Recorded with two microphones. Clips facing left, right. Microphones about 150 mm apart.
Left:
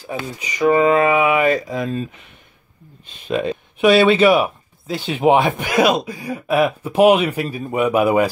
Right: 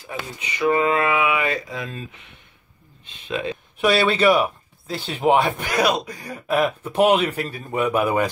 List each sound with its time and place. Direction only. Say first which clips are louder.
0.0 s mantra: left 5 dB; 35° left (ahead or behind)
3.8 s speech: left 5 dB; 5° left (ahead or behind)
5.2 s speech: left 3 dB; 20° left (ahead or behind)
6.0 s speech: left 4 dB; 5° left (ahead or behind)